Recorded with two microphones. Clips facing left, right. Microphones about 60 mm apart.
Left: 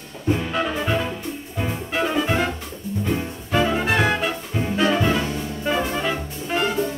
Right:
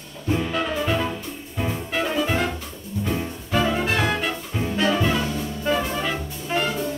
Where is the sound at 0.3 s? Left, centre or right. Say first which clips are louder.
Left 1 dB; centre.